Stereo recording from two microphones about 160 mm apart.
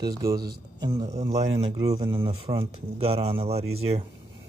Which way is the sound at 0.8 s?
25° right (ahead or behind).